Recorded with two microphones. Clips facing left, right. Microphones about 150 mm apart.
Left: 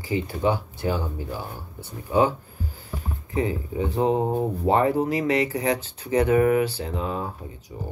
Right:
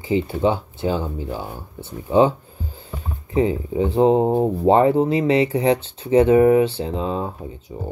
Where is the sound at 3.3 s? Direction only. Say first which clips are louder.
Right 6 dB; 30° right (ahead or behind).